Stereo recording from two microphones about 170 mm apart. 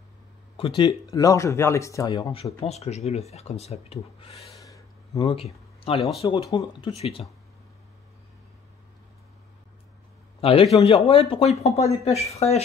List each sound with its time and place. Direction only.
0.6 s speech: 30° left (ahead or behind)
2.6 s speech: 40° left (ahead or behind)
4.6 s a sound: 20° left (ahead or behind)
5.3 s speech: 35° left (ahead or behind)
5.9 s speech: centre (ahead or behind)
6.2 s speech: 30° left (ahead or behind)
10.4 s speech: 35° left (ahead or behind)